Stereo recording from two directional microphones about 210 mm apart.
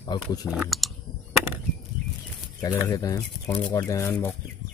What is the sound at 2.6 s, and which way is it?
Speech, 15° left (ahead or behind).